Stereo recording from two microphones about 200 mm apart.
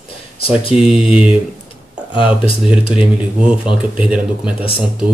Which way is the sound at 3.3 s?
5° right (ahead or behind).